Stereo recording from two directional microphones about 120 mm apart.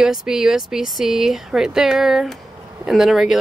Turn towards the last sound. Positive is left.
turn(degrees=-5)  # may be behind; listen again after turning